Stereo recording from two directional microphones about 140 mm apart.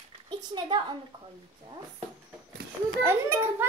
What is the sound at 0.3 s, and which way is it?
Speech, 35° right (ahead or behind).